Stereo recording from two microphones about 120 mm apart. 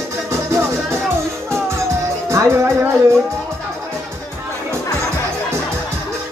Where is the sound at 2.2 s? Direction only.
25° right (ahead or behind).